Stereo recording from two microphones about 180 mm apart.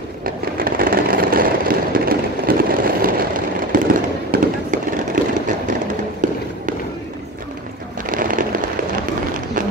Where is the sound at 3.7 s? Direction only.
50° right (ahead or behind).